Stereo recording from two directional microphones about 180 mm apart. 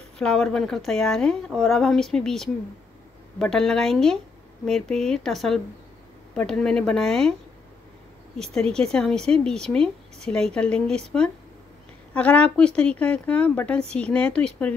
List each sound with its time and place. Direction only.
0.2 s speech: 5° left (ahead or behind)
8.4 s a woman's voice: 5° left (ahead or behind)